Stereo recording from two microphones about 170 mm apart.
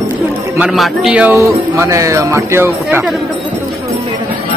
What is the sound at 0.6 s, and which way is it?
Speech, 5° right (ahead or behind).